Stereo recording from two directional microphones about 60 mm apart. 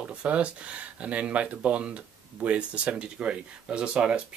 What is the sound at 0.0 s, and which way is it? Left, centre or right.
Speech, centre.